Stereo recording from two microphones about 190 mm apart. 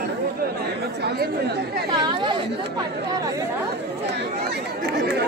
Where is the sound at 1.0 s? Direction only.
60° right (ahead or behind).